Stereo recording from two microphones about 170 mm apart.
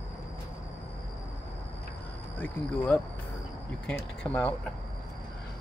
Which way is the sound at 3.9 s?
5° left (ahead or behind).